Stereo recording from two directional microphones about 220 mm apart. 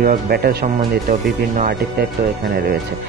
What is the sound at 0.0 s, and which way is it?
Speech, 40° right (ahead or behind).